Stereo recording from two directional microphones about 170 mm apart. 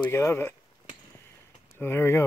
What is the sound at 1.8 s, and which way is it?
Speech, 15° left (ahead or behind).